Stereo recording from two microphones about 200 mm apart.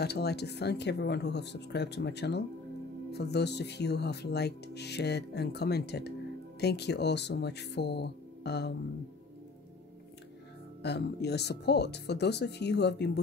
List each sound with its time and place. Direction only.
0.0 s speech: 55° left (ahead or behind)
10.8 s speech: 55° left (ahead or behind)